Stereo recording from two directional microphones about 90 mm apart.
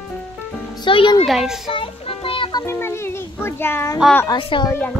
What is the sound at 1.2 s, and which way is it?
Speech, 5° right (ahead or behind).